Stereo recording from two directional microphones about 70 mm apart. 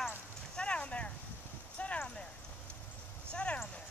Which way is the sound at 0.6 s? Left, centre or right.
Centre.